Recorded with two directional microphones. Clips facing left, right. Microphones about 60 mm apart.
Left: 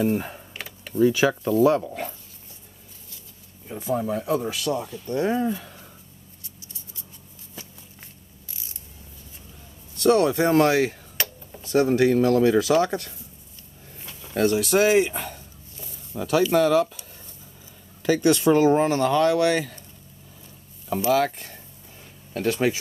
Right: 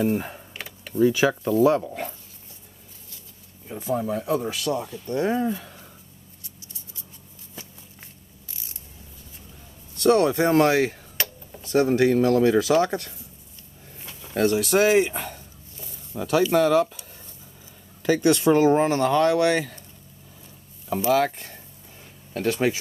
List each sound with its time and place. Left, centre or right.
0.0 s speech: centre
0.5 s computer keyboard: centre
0.9 s speech: centre
3.8 s speech: centre
4.5 s speech: right
5.6 s a sound: centre
10.0 s speech: right
11.2 s a sound: centre
11.7 s speech: right
14.3 s speech: right
21.1 s speech: right